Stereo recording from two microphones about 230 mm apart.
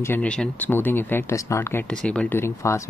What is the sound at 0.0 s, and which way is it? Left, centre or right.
Speech, centre.